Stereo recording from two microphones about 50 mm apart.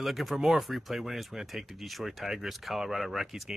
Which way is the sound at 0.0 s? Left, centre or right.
Centre.